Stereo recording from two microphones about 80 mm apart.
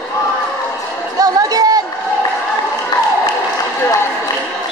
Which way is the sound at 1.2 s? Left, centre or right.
Right.